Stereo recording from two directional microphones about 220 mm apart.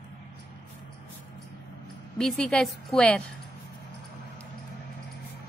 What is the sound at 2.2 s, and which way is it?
A woman's voice, 5° left (ahead or behind).